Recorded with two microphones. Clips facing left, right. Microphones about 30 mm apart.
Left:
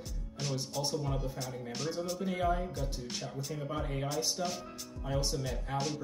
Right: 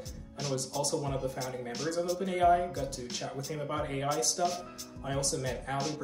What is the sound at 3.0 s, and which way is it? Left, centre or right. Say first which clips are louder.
Speech: right 2 dB; centre.